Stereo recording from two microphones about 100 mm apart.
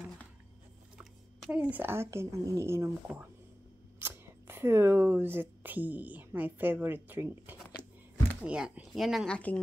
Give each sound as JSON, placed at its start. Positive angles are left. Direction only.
{"t": 1.5, "sound": "speech", "side_deg": -15}
{"t": 4.0, "sound": "speech", "side_deg": -20}
{"t": 7.8, "sound": "a sound", "side_deg": -20}
{"t": 8.4, "sound": "speech", "side_deg": -10}
{"t": 9.3, "sound": "speech", "side_deg": 15}